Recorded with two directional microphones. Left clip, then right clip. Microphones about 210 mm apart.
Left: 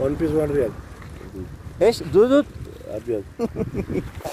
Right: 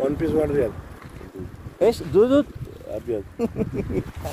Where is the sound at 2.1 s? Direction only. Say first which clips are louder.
Left 1 dB; 10° left (ahead or behind).